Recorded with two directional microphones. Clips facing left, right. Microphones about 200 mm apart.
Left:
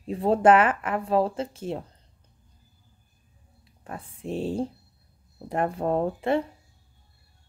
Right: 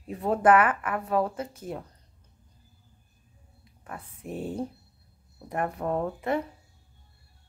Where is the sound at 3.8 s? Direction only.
30° left (ahead or behind).